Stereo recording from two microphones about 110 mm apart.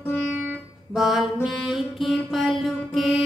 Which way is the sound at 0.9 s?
5° right (ahead or behind).